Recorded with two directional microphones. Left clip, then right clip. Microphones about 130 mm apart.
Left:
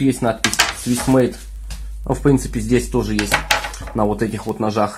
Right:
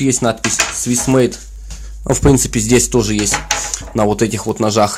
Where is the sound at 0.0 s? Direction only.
30° right (ahead or behind).